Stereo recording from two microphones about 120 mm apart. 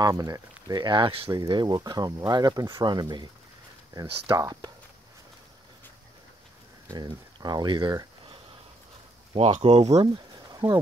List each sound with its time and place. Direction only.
0.0 s speech: 30° right (ahead or behind)
4.4 s speech: 30° right (ahead or behind)
6.9 s speech: 35° right (ahead or behind)
9.4 s speech: 60° right (ahead or behind)
10.1 s a sound: 30° right (ahead or behind)